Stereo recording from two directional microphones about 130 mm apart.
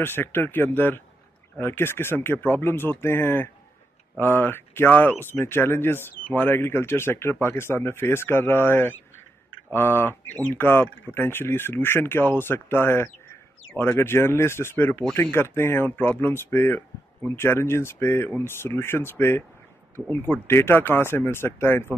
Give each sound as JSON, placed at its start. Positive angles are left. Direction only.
{"t": 0.0, "sound": "speech", "side_deg": 15}